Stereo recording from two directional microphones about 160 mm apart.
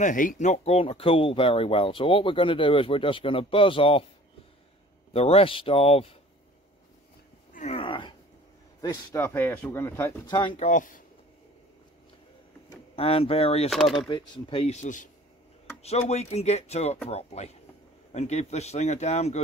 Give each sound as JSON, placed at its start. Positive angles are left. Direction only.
{"t": 0.0, "sound": "speech", "side_deg": 55}
{"t": 5.1, "sound": "speech", "side_deg": 40}
{"t": 7.5, "sound": "a sound", "side_deg": 40}
{"t": 8.8, "sound": "speech", "side_deg": 15}
{"t": 10.3, "sound": "speech", "side_deg": 30}
{"t": 10.7, "sound": "speech", "side_deg": 55}
{"t": 12.9, "sound": "speech", "side_deg": 35}
{"t": 13.7, "sound": "speech", "side_deg": 0}
{"t": 14.0, "sound": "speech", "side_deg": 30}